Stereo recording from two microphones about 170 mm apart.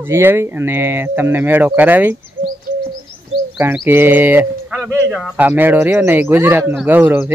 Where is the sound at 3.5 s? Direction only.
10° right (ahead or behind).